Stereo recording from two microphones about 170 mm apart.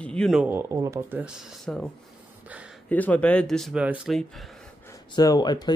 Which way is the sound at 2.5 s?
10° right (ahead or behind).